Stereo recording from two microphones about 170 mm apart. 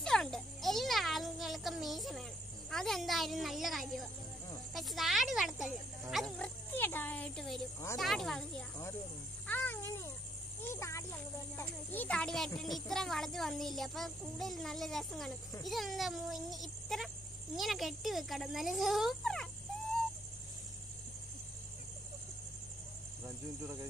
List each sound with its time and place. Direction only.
0.0 s a sound: 5° left (ahead or behind)
2.7 s a child's voice: centre (ahead or behind)
23.2 s speech: 15° right (ahead or behind)